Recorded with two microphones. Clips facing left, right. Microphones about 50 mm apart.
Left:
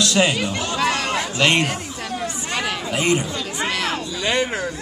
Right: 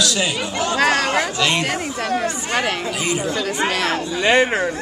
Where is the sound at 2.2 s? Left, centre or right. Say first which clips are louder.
Right 4 dB; right.